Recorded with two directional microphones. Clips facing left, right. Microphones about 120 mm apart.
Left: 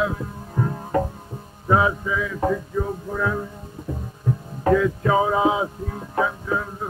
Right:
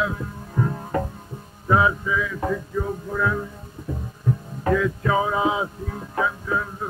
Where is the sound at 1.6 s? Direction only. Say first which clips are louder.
Even; 30° left (ahead or behind).